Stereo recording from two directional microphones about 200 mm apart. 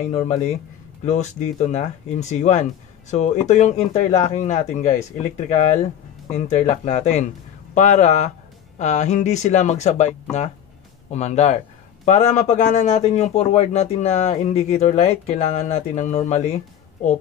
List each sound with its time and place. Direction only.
0.0 s speech: 30° left (ahead or behind)
6.3 s speech: 35° left (ahead or behind)